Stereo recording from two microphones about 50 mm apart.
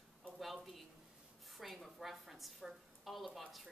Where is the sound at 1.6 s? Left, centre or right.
Centre.